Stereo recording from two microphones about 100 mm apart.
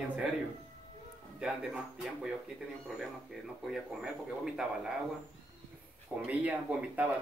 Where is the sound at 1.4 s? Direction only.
10° right (ahead or behind).